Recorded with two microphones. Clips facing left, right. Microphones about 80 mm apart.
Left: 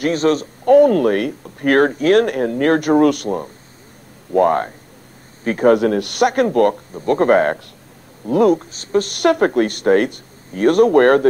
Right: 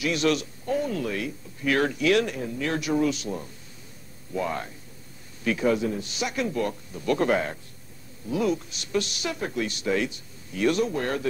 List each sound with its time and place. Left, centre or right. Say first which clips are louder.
0.0 s speech: left 8 dB; left
0.7 s speech: left 17 dB; left
5.4 s a man's voice: left 7 dB; left
5.7 s speech: left 14 dB; left
6.9 s speech: left 9 dB; left